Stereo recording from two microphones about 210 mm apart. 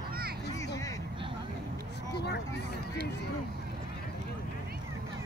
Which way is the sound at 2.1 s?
50° left (ahead or behind).